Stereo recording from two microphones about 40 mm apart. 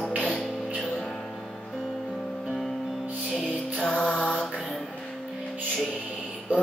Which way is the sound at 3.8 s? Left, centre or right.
Left.